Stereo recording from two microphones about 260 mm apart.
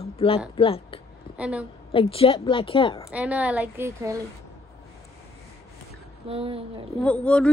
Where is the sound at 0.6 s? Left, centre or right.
Left.